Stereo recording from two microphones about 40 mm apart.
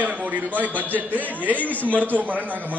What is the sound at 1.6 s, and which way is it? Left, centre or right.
Speech, left.